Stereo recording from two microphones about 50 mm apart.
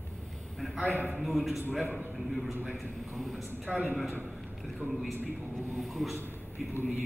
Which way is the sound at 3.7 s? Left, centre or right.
Centre.